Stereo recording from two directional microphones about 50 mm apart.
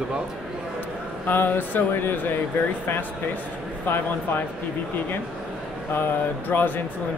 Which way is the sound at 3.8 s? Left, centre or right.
Left.